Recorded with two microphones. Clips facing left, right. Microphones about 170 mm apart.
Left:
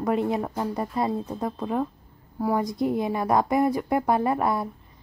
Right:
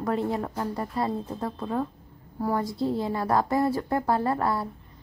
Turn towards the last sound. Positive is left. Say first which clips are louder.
# left 2 dB
turn(degrees=20)  # may be behind; listen again after turning